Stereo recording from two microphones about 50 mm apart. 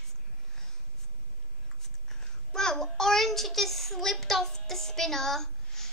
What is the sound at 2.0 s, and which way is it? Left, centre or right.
A child's voice, centre.